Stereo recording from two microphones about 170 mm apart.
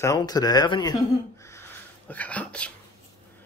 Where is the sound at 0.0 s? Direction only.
20° left (ahead or behind).